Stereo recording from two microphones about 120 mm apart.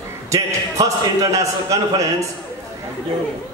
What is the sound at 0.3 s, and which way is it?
A man's voice, 25° right (ahead or behind).